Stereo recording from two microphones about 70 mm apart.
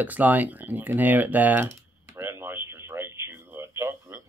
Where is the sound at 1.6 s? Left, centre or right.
Right.